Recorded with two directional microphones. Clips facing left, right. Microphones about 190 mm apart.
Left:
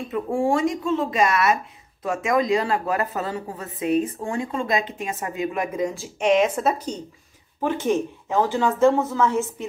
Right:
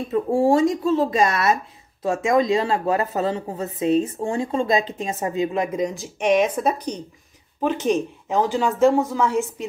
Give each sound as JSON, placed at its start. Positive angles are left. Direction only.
{"t": 0.1, "sound": "a woman's voice", "side_deg": -35}